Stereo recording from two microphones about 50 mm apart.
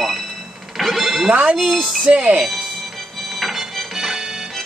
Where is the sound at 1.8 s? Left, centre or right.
Centre.